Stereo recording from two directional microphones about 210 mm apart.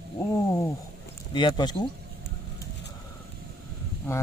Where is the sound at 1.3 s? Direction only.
20° left (ahead or behind).